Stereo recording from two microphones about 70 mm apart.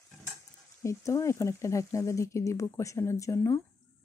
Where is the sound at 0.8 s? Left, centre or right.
Left.